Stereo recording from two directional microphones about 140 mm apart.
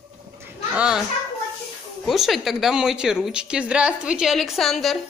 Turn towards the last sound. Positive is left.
turn(degrees=0)  # may be behind; listen again after turning